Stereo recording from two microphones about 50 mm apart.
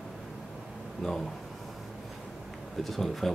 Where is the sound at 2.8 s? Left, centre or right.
Centre.